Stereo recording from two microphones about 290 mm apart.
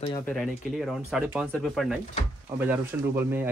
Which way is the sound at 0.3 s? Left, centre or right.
Centre.